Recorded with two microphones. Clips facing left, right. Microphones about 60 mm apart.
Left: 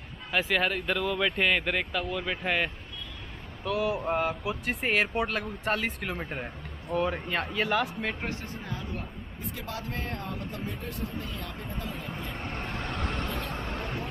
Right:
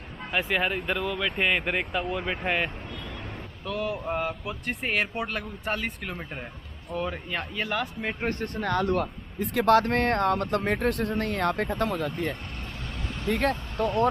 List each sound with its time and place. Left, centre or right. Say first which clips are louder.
0.3 s speech: even; centre
1.4 s speech: right 1 dB; centre
3.6 s speech: left 2 dB; centre
8.3 s speech: right 8 dB; right
12.7 s vehicle: left 5 dB; left
13.3 s speech: right 8 dB; right